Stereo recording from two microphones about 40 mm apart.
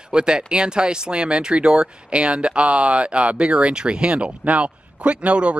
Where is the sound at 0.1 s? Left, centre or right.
Right.